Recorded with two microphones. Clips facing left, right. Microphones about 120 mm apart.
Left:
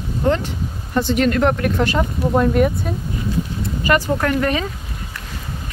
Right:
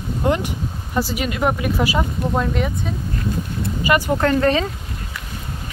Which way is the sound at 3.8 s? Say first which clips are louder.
Left 1 dB; 15° right (ahead or behind).